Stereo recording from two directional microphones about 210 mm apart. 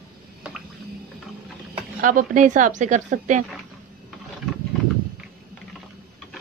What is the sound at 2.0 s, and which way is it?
A woman's voice, 40° right (ahead or behind).